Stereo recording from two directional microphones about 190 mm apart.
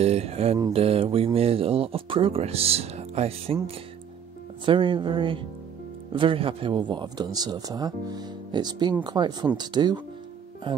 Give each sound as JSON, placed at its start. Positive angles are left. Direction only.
{"t": 0.0, "sound": "speech", "side_deg": -35}
{"t": 4.6, "sound": "speech", "side_deg": -25}